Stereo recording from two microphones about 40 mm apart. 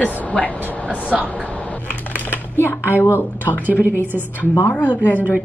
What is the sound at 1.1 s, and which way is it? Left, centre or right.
Speech, centre.